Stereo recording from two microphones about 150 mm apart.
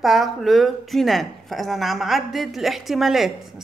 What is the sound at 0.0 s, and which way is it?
A woman's voice, centre (ahead or behind).